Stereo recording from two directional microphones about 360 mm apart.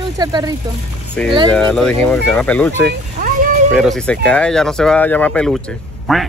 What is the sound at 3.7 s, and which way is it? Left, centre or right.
Speech, centre.